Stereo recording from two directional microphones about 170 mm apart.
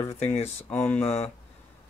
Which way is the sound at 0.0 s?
15° left (ahead or behind).